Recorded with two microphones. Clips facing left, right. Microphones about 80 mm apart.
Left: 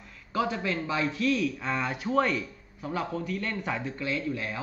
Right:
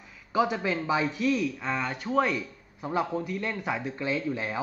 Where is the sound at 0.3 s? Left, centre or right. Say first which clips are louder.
Right 3 dB; centre.